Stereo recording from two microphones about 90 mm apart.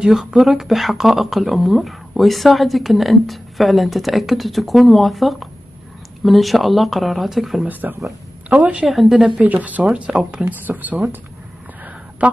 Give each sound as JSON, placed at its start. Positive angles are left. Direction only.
{"t": 0.0, "sound": "speech", "side_deg": -5}
{"t": 7.6, "sound": "speech", "side_deg": -20}
{"t": 8.8, "sound": "speech", "side_deg": 0}
{"t": 9.4, "sound": "speech", "side_deg": -15}
{"t": 12.2, "sound": "speech", "side_deg": -10}